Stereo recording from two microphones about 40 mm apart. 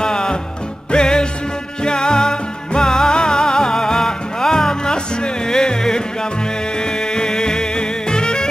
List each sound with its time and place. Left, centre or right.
0.0 s music: centre